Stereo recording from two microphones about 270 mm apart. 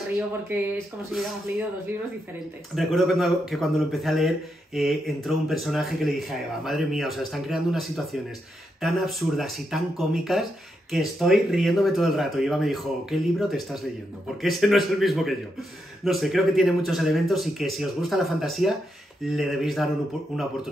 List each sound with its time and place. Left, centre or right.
2.7 s speech: centre